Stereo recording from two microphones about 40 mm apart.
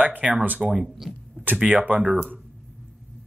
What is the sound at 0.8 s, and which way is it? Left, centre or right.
Speech, centre.